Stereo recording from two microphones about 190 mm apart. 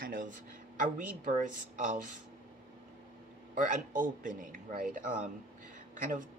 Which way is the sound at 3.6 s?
45° right (ahead or behind).